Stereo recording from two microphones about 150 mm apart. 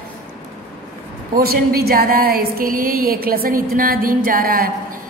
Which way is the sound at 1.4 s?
90° right.